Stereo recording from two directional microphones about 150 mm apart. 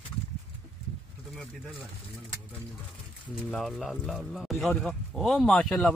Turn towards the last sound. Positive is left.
turn(degrees=0)  # may be behind; listen again after turning